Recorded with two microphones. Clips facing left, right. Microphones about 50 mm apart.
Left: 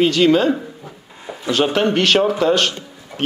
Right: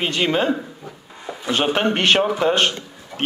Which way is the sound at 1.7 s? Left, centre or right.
Right.